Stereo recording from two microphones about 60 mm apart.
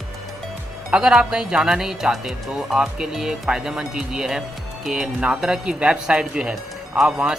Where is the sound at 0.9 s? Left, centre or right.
Centre.